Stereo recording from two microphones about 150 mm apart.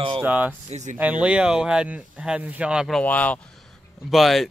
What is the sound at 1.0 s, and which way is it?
Speech, 10° right (ahead or behind).